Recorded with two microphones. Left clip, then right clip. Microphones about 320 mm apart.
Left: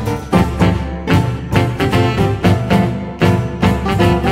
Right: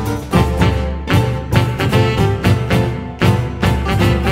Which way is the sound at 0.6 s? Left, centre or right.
Centre.